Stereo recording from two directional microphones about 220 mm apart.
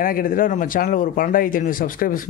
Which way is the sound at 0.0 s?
40° left (ahead or behind).